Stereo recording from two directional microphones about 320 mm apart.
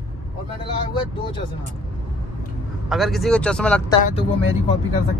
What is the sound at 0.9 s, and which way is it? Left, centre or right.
Speech, centre.